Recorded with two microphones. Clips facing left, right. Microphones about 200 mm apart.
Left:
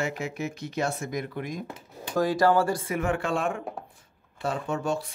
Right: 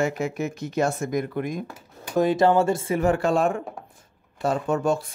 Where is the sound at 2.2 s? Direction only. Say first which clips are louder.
Right 3 dB; 20° right (ahead or behind).